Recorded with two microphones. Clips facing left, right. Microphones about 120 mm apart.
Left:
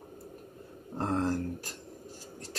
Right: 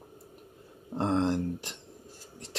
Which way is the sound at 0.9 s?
25° right (ahead or behind).